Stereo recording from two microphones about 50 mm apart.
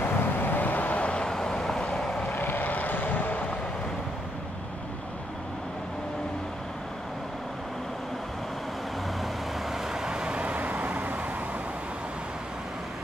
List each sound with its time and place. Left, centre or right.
0.0 s vehicle: left
1.2 s vehicle: centre
2.2 s vehicle: left
9.2 s vehicle: centre
10.1 s vehicle: right